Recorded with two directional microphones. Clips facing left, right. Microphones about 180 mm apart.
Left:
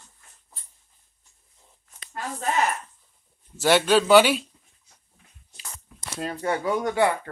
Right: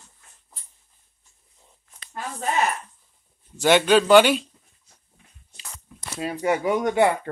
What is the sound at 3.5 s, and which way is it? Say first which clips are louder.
Speech: right 2 dB; centre (ahead or behind).